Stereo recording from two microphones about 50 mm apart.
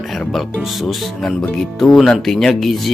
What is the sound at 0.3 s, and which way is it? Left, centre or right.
Speech, centre.